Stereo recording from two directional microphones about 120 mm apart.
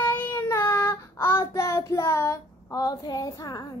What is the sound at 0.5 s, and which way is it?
Child singing, 20° left (ahead or behind).